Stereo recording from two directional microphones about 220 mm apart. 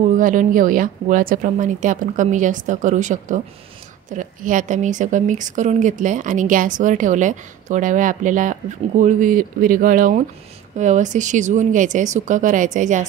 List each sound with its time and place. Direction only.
0.0 s speech: 35° right (ahead or behind)